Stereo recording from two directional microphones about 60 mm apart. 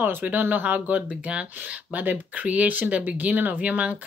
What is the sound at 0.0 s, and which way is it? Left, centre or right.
Speech, right.